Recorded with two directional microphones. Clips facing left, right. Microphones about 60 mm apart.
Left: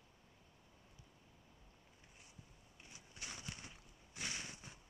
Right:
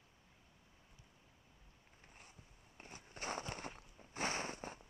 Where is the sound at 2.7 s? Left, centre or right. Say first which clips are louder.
Right 6 dB; right.